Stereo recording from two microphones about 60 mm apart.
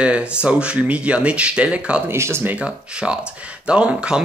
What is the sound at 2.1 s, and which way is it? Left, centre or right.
Speech, right.